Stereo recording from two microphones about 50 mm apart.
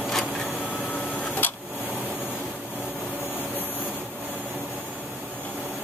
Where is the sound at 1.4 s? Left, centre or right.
Left.